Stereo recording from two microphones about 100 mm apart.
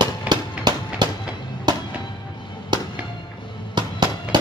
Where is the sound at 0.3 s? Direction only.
45° right (ahead or behind).